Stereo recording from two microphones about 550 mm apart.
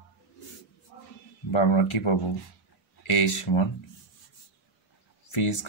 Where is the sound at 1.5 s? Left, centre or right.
Left.